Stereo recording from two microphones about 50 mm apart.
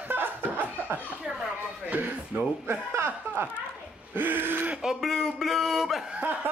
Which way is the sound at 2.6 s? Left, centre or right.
Right.